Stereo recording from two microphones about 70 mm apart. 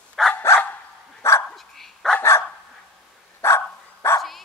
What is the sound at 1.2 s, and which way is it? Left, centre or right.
Dog, left.